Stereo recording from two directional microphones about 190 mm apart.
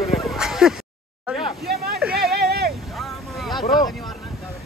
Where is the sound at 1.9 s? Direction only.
Centre (ahead or behind).